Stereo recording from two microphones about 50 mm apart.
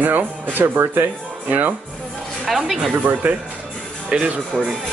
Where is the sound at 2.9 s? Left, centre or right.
Right.